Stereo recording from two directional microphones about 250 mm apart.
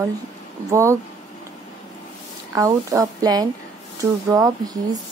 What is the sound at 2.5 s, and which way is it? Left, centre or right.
A woman's voice, centre.